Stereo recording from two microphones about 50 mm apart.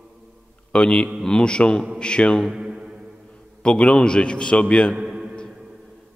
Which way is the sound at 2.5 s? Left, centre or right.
Centre.